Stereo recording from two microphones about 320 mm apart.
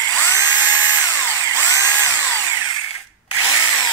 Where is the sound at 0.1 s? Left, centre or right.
Centre.